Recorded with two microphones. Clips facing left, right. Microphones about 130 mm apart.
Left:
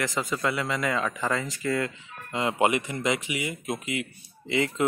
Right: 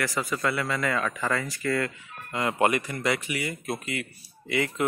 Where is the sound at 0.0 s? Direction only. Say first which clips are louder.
Even; 20° left (ahead or behind).